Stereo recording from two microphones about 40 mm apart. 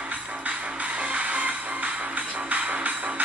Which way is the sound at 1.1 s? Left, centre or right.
Right.